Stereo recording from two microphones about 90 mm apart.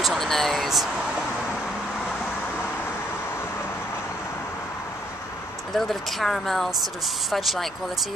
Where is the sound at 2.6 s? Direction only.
25° left (ahead or behind).